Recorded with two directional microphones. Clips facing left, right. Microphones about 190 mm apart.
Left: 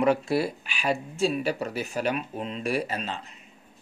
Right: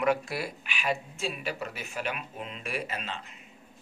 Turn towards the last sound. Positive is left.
turn(degrees=35)  # may be behind; listen again after turning